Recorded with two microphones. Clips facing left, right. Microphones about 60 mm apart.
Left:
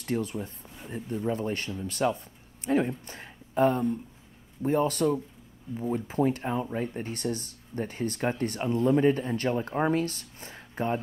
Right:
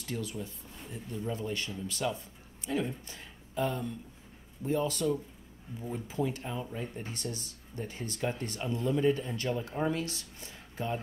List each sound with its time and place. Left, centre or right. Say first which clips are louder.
0.0 s speech: left 7 dB; left